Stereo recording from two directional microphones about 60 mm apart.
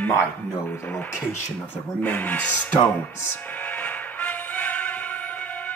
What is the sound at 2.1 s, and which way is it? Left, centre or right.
Speech, left.